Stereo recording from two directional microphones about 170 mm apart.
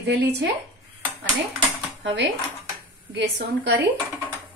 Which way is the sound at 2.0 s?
90° right.